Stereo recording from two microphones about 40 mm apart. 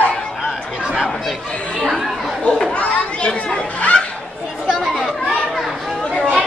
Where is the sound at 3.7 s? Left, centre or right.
Left.